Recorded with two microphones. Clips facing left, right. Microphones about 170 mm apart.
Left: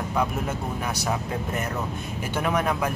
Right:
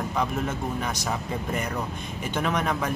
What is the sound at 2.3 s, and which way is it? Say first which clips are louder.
Speech: left 1 dB; 5° left (ahead or behind).